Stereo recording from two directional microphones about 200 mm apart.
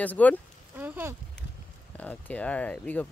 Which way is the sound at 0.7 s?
10° right (ahead or behind).